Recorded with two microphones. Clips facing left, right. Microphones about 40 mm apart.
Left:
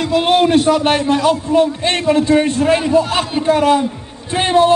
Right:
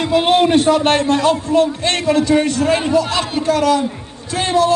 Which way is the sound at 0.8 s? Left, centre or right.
Centre.